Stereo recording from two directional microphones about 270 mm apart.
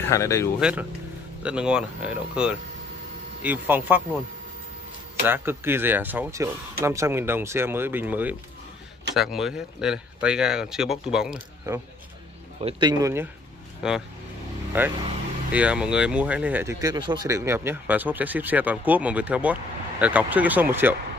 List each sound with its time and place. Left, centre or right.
0.1 s speech: centre
0.6 s speech: centre
5.2 s speech: centre